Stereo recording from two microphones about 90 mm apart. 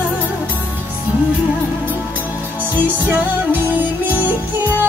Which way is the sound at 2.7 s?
20° right (ahead or behind).